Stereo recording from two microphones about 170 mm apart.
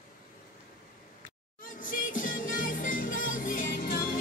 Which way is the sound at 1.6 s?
50° left (ahead or behind).